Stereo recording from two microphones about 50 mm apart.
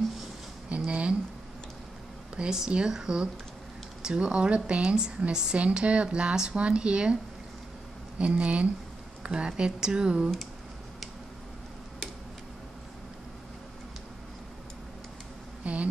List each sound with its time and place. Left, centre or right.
0.7 s a sound: right
2.3 s speech: centre
8.2 s speech: right
15.6 s insect: right